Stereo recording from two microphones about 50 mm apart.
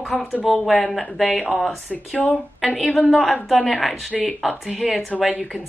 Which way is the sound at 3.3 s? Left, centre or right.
Centre.